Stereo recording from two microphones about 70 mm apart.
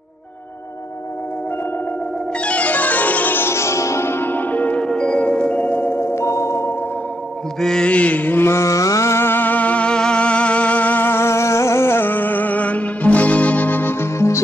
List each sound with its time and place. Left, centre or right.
2.4 s music: centre; by 6.7 s left
7.6 s mantra: centre; by 14.4 s left